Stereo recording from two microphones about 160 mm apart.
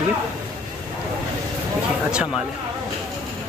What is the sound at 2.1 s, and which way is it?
Speech, 5° right (ahead or behind).